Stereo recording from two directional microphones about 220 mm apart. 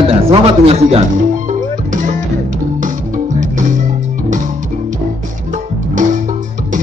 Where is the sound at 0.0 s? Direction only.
25° right (ahead or behind).